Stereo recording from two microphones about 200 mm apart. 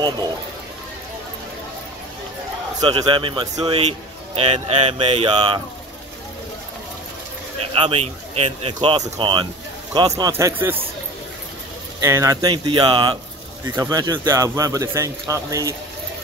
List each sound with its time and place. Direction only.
2.8 s speech: 20° right (ahead or behind)
7.7 s speech: 30° right (ahead or behind); by 10.8 s 10° right (ahead or behind)
12.0 s speech: 15° right (ahead or behind)